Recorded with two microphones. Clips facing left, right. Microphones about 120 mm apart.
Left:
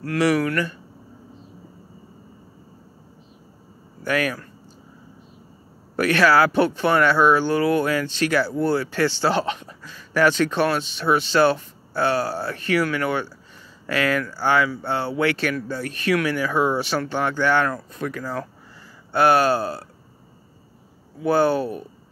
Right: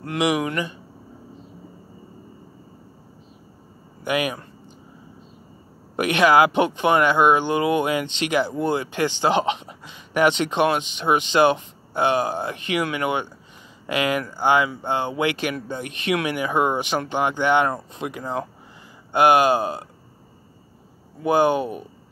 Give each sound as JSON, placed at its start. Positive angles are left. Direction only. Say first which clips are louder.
{"t": 0.0, "sound": "speech", "louder": "left 2 dB", "side_deg": -20}
{"t": 4.0, "sound": "speech", "louder": "even", "side_deg": -15}
{"t": 5.9, "sound": "speech", "louder": "right 1 dB", "side_deg": -20}
{"t": 21.2, "sound": "speech", "louder": "even", "side_deg": -15}